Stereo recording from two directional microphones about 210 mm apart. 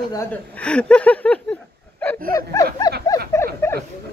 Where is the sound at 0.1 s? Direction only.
10° left (ahead or behind).